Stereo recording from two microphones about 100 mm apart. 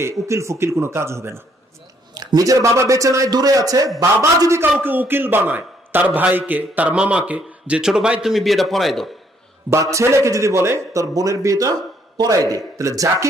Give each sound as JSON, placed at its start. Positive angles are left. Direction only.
{"t": 0.0, "sound": "a man's voice", "side_deg": -30}
{"t": 2.1, "sound": "a man's voice", "side_deg": -35}
{"t": 9.7, "sound": "a man's voice", "side_deg": -30}